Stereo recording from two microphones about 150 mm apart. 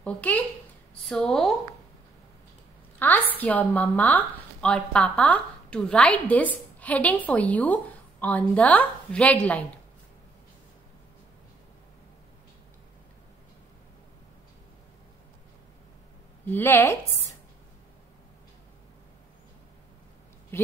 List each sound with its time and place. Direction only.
0.0 s a woman's voice: 10° left (ahead or behind)
3.0 s a sound: 10° left (ahead or behind)
3.3 s a woman's voice: 10° left (ahead or behind)
16.5 s a woman's voice: 15° left (ahead or behind)
20.5 s a woman's voice: 15° left (ahead or behind)